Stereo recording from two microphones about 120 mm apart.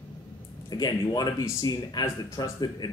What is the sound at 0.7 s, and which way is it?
Speech, 35° left (ahead or behind).